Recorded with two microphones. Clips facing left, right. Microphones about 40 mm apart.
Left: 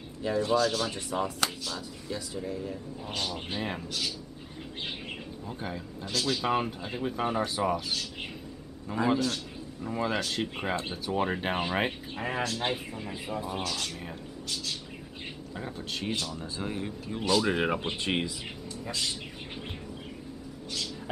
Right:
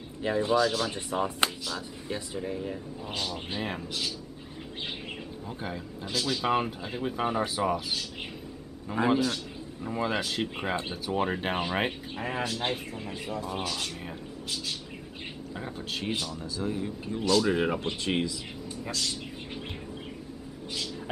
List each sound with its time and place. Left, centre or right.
0.2 s speech: right
0.5 s speech: centre
0.9 s speech: right
3.2 s speech: centre
5.6 s speech: centre
8.9 s speech: centre
13.0 s speech: centre
13.6 s speech: centre
15.5 s speech: centre
16.5 s speech: left